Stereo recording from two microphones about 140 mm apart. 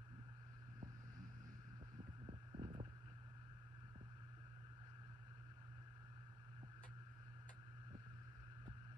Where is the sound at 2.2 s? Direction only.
40° right (ahead or behind).